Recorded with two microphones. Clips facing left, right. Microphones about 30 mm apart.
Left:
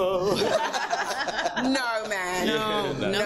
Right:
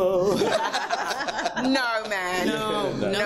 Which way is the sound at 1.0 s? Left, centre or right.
Left.